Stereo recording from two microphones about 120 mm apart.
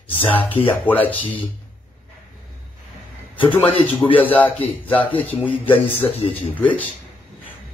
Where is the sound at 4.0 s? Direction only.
45° left (ahead or behind).